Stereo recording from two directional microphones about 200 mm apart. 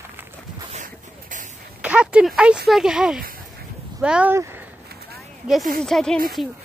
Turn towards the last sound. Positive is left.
turn(degrees=0)  # may be behind; listen again after turning